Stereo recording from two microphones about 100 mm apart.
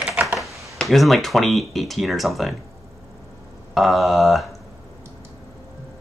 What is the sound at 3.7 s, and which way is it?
Speech, centre (ahead or behind).